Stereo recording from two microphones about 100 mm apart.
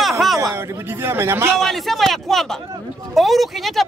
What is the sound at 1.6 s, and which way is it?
Speech, centre (ahead or behind).